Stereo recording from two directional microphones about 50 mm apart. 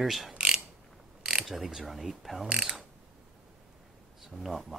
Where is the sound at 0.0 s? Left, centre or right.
Centre.